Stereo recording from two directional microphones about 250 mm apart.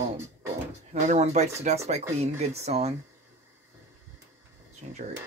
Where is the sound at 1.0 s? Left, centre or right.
Right.